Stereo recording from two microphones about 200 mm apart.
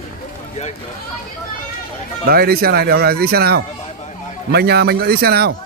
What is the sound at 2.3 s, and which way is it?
A man's voice, 50° right (ahead or behind).